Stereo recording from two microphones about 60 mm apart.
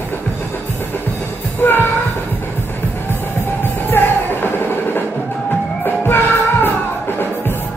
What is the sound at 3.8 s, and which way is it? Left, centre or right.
Music, left.